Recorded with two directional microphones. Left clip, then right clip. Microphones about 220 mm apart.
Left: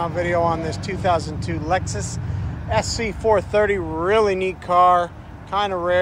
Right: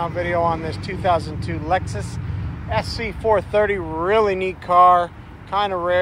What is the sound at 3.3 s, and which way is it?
Speech, 10° left (ahead or behind).